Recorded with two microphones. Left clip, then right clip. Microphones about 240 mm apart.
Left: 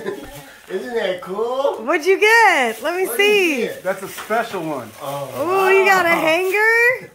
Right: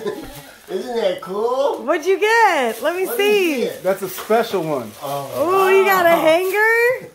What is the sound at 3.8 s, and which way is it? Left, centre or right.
Speech, right.